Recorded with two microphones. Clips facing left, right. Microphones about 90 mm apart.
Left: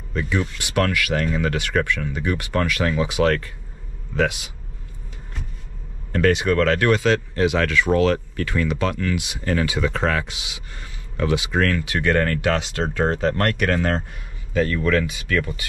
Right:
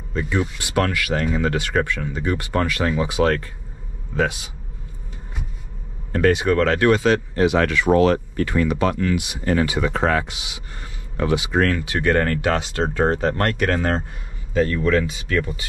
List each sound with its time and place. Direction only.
0.1 s speech: 20° right (ahead or behind)
6.1 s speech: 25° right (ahead or behind)